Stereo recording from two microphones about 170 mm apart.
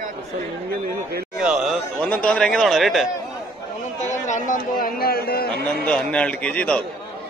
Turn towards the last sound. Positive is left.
turn(degrees=5)  # may be behind; listen again after turning